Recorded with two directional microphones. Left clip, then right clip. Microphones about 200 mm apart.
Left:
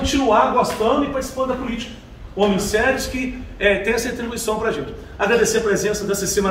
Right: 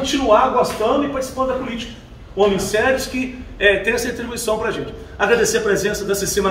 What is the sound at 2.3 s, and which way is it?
A man's voice, 10° right (ahead or behind).